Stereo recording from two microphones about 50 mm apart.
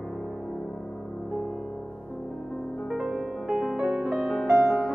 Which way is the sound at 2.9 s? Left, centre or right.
Centre.